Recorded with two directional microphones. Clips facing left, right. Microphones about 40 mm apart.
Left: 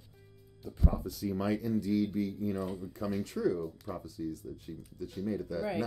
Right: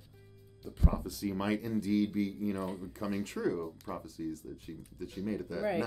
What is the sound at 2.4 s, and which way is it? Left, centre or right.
Speech, right.